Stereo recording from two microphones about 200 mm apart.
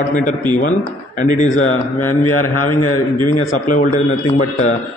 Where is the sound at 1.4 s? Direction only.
35° left (ahead or behind).